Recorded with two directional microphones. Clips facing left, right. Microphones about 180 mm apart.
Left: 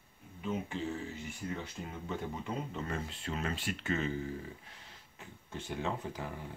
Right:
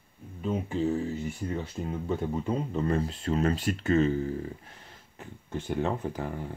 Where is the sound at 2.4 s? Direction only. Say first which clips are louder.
Right 10 dB; 35° right (ahead or behind).